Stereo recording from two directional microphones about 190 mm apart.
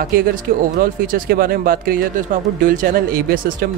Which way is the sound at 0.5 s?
45° right (ahead or behind).